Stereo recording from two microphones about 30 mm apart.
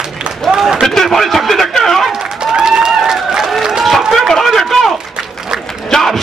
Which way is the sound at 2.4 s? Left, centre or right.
Right.